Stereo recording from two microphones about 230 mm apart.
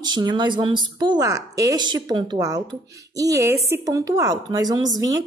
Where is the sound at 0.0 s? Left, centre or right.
Centre.